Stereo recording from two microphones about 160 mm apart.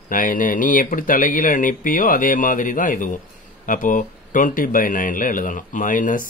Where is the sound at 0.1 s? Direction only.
55° left (ahead or behind).